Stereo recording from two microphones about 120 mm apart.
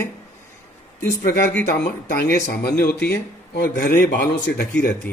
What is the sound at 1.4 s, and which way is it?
Speech, 10° left (ahead or behind).